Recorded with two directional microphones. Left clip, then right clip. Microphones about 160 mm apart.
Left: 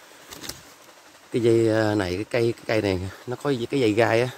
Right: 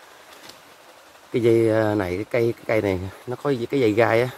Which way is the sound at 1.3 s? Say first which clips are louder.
Right 2 dB; 5° left (ahead or behind).